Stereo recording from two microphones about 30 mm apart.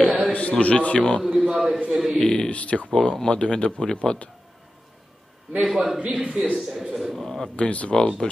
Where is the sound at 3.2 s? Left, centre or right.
Left.